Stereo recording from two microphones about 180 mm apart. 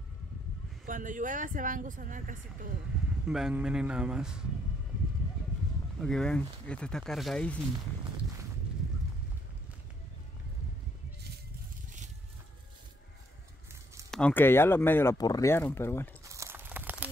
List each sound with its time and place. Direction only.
0.8 s speech: 45° right (ahead or behind)
3.3 s speech: 5° right (ahead or behind)
5.9 s speech: 5° left (ahead or behind)
14.1 s speech: 10° left (ahead or behind)
16.3 s crumpling: 15° right (ahead or behind)